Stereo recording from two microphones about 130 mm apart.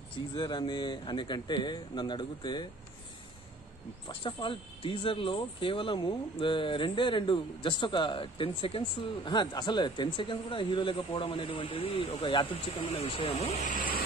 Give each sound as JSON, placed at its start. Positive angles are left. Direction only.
{"t": 0.3, "sound": "speech", "side_deg": 35}
{"t": 4.1, "sound": "speech", "side_deg": 40}